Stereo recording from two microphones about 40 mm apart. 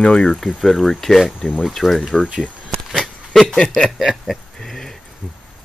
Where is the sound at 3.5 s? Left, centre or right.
Centre.